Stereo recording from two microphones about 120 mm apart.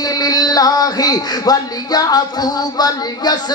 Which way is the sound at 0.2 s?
35° left (ahead or behind).